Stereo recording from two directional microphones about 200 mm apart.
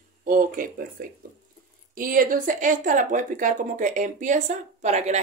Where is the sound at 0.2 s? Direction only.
45° right (ahead or behind).